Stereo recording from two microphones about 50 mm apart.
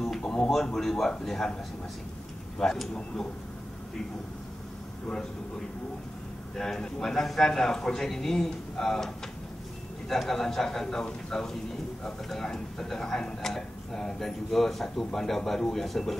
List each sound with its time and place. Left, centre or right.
0.2 s a sound: centre
0.5 s a man's voice: centre
2.6 s a man's voice: centre
6.5 s a man's voice: centre